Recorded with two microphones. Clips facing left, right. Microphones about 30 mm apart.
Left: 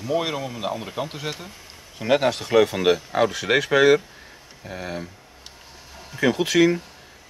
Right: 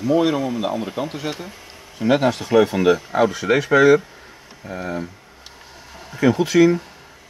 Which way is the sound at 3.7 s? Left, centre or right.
Left.